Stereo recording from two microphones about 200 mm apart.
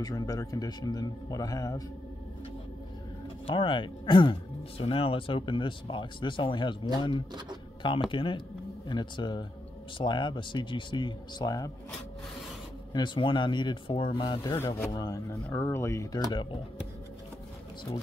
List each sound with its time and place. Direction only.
0.0 s speech: 20° left (ahead or behind)
3.4 s speech: 25° left (ahead or behind)
12.9 s speech: 25° left (ahead or behind)